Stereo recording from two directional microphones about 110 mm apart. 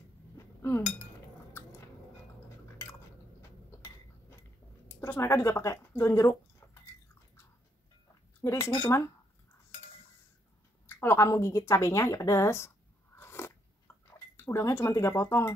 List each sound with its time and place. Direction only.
0.6 s chink: 20° left (ahead or behind)
4.8 s speech: 20° left (ahead or behind)
8.4 s speech: 25° left (ahead or behind)
10.9 s a woman's voice: 20° left (ahead or behind)